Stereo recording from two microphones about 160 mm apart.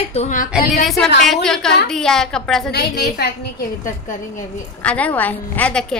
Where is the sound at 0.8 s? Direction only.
Centre (ahead or behind).